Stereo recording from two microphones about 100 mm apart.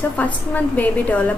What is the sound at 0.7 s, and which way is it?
Speech, 15° left (ahead or behind).